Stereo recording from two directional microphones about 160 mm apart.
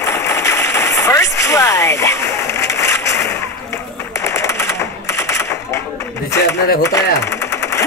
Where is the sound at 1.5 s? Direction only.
20° left (ahead or behind).